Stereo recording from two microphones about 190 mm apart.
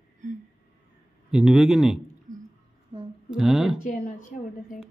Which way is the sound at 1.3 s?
5° right (ahead or behind).